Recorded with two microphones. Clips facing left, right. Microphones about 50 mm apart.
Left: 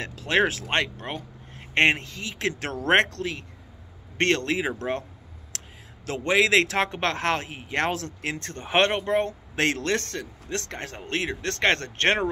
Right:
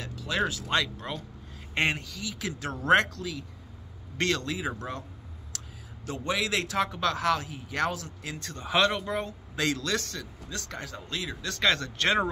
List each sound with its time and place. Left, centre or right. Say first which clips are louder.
0.0 s speech: left 6 dB; left
1.7 s a man's voice: left 7 dB; left
5.5 s a sound: left 3 dB; left
6.0 s speech: left 8 dB; left